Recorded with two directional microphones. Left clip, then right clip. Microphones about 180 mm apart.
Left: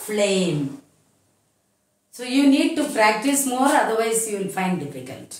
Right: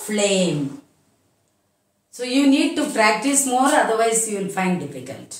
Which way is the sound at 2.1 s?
15° left (ahead or behind).